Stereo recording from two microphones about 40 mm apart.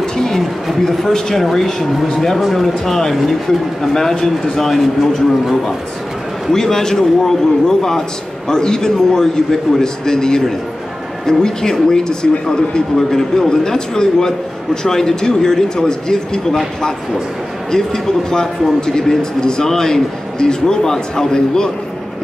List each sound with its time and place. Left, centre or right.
0.0 s a sound: centre
0.4 s speech: centre
5.4 s speech: centre
6.5 s speech: centre
17.6 s speech: centre